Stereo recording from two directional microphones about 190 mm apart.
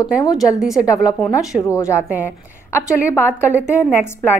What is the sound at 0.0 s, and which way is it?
Speech, 20° left (ahead or behind).